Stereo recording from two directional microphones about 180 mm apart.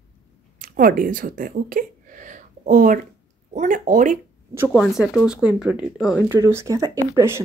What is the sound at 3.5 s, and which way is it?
Speech, 45° right (ahead or behind).